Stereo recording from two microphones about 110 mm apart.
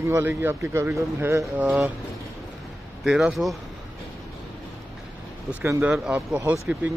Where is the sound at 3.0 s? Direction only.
5° right (ahead or behind).